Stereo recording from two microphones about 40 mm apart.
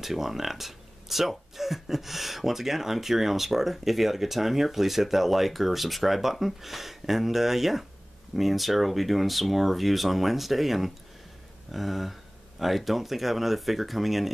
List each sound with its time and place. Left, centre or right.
0.0 s speech: centre